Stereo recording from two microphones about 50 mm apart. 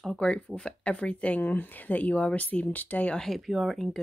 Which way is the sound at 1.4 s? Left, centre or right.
Left.